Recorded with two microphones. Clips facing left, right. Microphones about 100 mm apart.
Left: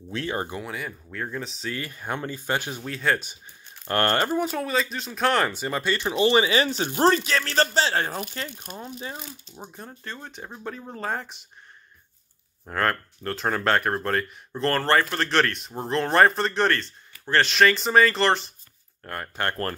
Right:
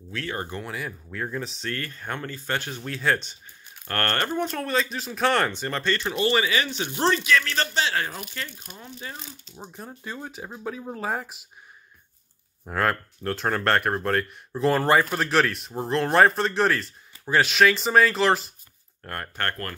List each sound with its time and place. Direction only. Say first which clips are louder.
0.1 s speech: left 3 dB; 20° left (ahead or behind)
0.6 s speech: even; centre (ahead or behind)
2.9 s speech: even; centre (ahead or behind)
3.8 s speech: left 4 dB; 15° left (ahead or behind); by 8.5 s 35° left (ahead or behind)
8.8 s speech: left 2 dB; 20° left (ahead or behind)
9.6 s speech: right 2 dB; centre (ahead or behind)
12.6 s speech: even; centre (ahead or behind)
19.6 s speech: left 5 dB; 35° left (ahead or behind)